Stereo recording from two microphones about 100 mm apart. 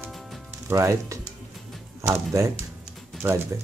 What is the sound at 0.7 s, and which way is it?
Speech, 30° right (ahead or behind).